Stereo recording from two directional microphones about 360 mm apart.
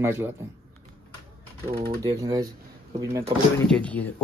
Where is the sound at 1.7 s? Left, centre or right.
Centre.